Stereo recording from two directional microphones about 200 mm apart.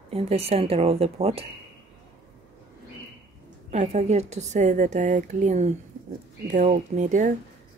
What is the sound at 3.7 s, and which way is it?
A woman's voice, 35° right (ahead or behind).